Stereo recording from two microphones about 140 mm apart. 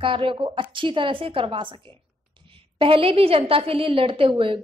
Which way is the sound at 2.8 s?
40° right (ahead or behind).